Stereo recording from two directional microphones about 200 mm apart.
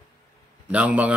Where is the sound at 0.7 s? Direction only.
5° right (ahead or behind).